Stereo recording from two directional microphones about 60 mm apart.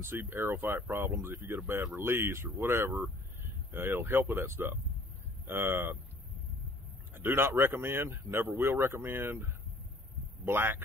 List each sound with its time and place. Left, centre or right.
0.0 s speech: right
7.2 s speech: right